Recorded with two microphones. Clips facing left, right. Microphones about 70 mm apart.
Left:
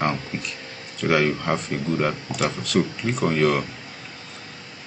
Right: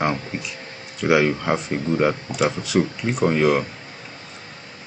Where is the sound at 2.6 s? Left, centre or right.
Centre.